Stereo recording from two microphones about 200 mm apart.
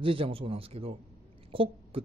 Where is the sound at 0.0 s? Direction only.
25° right (ahead or behind).